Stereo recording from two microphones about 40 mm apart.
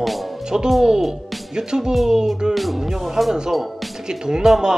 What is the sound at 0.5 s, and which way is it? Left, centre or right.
Speech, centre.